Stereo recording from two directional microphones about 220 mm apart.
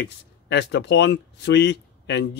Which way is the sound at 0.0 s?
50° left (ahead or behind).